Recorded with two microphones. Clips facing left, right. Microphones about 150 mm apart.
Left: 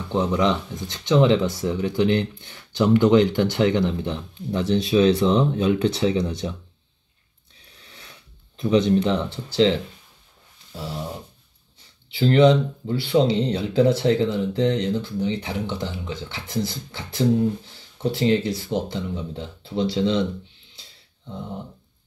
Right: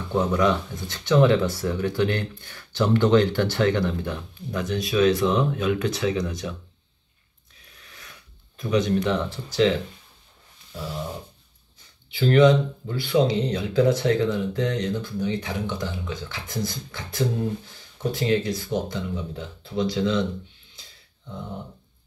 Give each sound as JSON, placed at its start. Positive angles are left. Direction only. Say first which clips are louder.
{"t": 0.3, "sound": "speech", "louder": "even", "side_deg": 20}
{"t": 7.6, "sound": "a sound", "louder": "left 1 dB", "side_deg": 30}
{"t": 12.1, "sound": "speech", "louder": "left 1 dB", "side_deg": 25}